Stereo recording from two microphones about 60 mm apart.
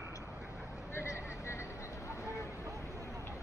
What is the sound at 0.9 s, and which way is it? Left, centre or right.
Vehicle, left.